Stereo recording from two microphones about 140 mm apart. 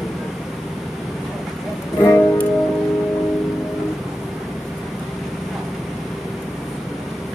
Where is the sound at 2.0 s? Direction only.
15° left (ahead or behind).